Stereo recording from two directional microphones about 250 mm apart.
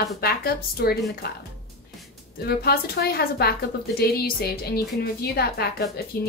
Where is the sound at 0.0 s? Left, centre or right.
Left.